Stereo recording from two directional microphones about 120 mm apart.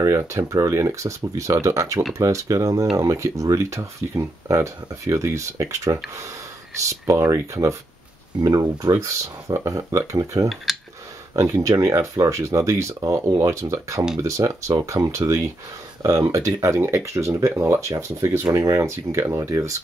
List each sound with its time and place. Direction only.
0.0 s speech: 25° right (ahead or behind)
10.5 s speech: centre (ahead or behind)
11.3 s speech: 25° right (ahead or behind)